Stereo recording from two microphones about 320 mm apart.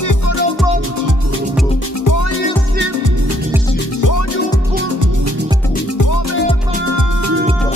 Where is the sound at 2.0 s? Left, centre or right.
Left.